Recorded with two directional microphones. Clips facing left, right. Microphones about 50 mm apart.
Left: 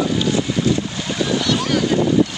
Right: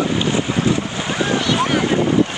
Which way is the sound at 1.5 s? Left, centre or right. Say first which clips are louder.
Right 1 dB; right.